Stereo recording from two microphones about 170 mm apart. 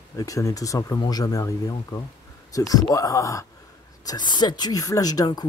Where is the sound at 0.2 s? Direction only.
20° left (ahead or behind).